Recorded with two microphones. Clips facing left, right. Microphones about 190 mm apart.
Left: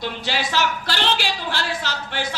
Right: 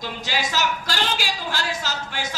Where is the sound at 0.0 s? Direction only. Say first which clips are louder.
Left 2 dB; 45° right (ahead or behind).